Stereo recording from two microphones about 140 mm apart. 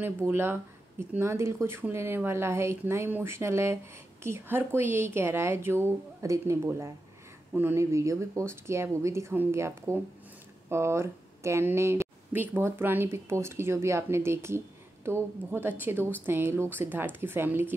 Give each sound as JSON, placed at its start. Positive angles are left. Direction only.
{"t": 0.0, "sound": "speech", "side_deg": -20}